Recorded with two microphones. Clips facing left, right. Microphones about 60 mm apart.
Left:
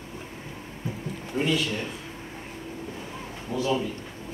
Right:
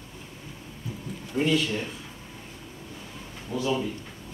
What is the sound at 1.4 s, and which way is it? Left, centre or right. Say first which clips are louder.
Speech: right 2 dB; centre.